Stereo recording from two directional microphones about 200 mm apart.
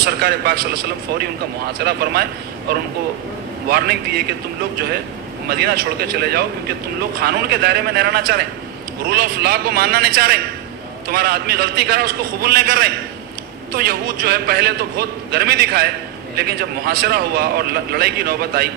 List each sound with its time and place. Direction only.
0.0 s a man's voice: 50° right (ahead or behind)
1.8 s a man's voice: 50° right (ahead or behind)
3.6 s a man's voice: 50° right (ahead or behind)
5.5 s a man's voice: 50° right (ahead or behind)